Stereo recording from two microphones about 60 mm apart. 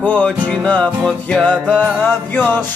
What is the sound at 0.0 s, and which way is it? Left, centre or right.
Music, left.